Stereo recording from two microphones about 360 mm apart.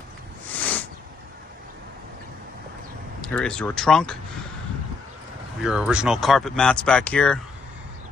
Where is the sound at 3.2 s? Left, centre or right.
Centre.